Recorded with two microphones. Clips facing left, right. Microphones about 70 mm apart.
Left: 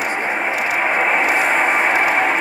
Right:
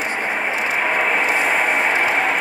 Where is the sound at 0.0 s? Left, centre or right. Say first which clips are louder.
Left 2 dB; centre.